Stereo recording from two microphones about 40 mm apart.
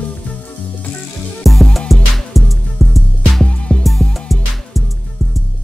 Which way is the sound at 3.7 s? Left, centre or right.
Left.